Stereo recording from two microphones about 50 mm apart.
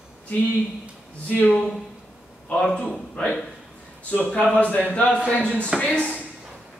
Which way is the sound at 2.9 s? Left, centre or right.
Left.